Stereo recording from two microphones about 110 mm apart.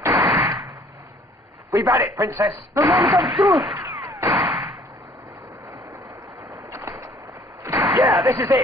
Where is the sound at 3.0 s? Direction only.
40° right (ahead or behind).